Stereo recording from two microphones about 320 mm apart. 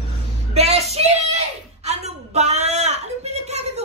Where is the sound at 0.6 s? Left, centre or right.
Centre.